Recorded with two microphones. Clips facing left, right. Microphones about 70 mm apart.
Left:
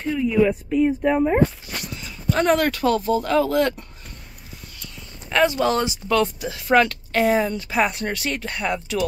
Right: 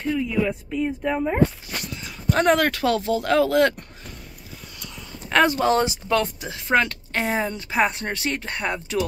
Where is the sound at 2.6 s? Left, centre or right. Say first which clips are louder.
Left 1 dB; right.